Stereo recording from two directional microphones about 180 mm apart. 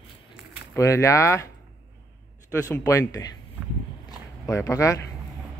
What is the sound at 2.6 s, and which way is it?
Speech, 15° left (ahead or behind).